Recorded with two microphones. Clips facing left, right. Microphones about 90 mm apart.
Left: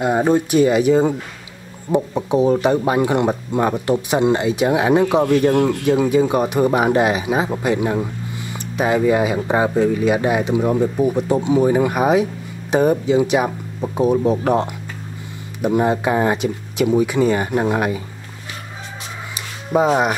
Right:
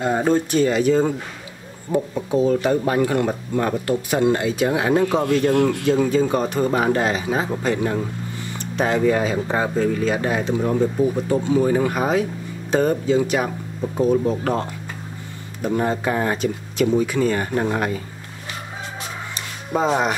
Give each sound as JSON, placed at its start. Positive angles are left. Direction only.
{"t": 0.0, "sound": "speech", "side_deg": 15}
{"t": 5.9, "sound": "speech", "side_deg": 15}
{"t": 19.7, "sound": "speech", "side_deg": 10}